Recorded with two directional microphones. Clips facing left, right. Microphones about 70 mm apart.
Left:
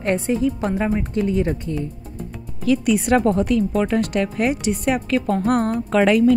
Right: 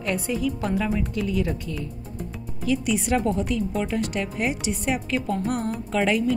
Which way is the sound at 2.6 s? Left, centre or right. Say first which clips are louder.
Left 6 dB; left.